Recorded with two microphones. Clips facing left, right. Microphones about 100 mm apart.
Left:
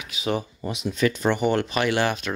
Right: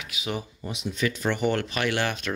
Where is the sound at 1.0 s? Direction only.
50° left (ahead or behind).